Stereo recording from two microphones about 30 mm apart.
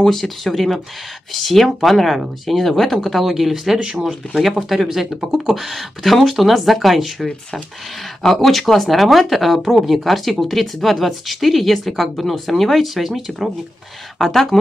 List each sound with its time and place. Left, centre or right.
0.0 s speech: centre
1.9 s speech: centre
3.2 s speech: centre
3.5 s speech: centre
4.4 s speech: centre
8.2 s speech: centre
14.1 s speech: centre